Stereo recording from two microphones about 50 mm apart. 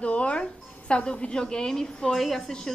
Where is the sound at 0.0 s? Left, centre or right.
Left.